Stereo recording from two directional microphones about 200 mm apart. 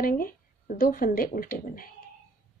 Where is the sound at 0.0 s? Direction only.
45° left (ahead or behind).